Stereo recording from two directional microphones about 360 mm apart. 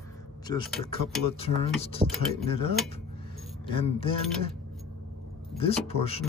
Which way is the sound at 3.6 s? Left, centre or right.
Centre.